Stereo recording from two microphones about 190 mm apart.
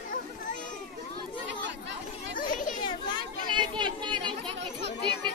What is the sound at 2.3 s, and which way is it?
Children playing, 45° left (ahead or behind).